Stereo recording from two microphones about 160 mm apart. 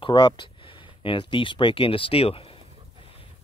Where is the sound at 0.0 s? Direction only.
30° left (ahead or behind).